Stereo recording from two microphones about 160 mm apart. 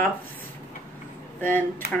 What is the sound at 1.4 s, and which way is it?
Speech, 10° left (ahead or behind).